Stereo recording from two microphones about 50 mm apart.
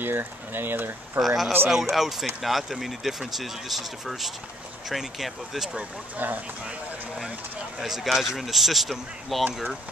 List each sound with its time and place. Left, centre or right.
0.0 s speech: right
1.2 s speech: centre
6.1 s speech: right
7.8 s speech: centre